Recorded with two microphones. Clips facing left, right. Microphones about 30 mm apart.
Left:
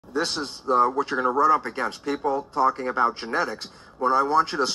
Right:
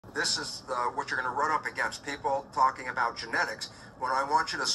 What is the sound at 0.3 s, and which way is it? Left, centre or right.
Speech, left.